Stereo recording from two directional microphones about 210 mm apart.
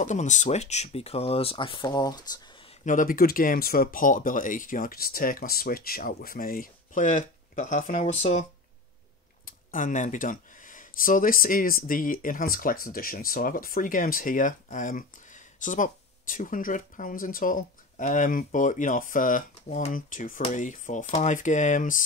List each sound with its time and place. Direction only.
0.0 s speech: 35° left (ahead or behind); by 2.4 s 20° left (ahead or behind)
2.8 s speech: 40° left (ahead or behind)